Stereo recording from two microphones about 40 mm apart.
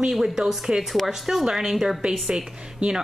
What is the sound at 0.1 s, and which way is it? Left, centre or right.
A woman's voice, centre.